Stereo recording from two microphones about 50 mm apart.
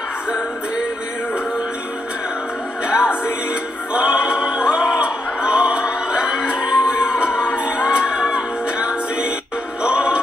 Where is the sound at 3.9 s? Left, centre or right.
Centre.